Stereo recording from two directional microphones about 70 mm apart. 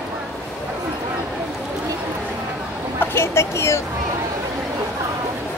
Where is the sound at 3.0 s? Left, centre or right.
Left.